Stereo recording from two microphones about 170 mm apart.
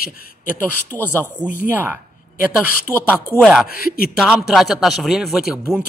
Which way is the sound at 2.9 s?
15° left (ahead or behind).